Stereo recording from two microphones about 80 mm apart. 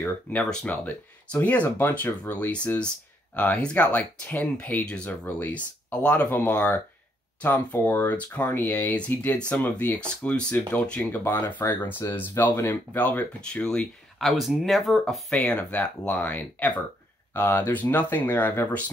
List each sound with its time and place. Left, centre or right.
0.4 s speech: centre
7.8 s speech: left
13.5 s speech: centre
14.2 s speech: centre; by 18.7 s left